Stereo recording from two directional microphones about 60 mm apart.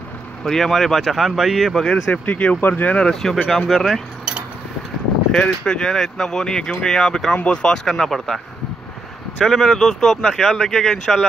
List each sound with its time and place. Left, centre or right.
0.4 s speech: centre
1.8 s speech: centre
2.2 s speech: left
2.9 s speech: centre
5.3 s speech: centre
9.4 s speech: centre